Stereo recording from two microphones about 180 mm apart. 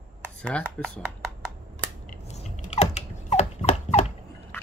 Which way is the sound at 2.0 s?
50° left (ahead or behind).